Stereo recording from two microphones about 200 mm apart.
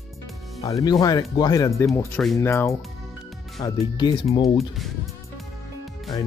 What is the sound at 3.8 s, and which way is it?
Speech, 20° left (ahead or behind).